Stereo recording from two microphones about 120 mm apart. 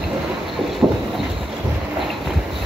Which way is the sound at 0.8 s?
10° right (ahead or behind).